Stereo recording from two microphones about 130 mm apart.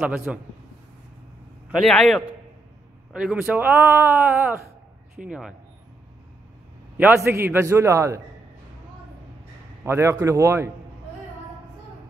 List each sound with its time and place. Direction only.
0.3 s a man's voice: 5° right (ahead or behind)
1.8 s a man's voice: 5° left (ahead or behind)
3.1 s speech: 5° right (ahead or behind)
7.0 s a man's voice: 15° right (ahead or behind)
9.8 s a man's voice: 20° right (ahead or behind)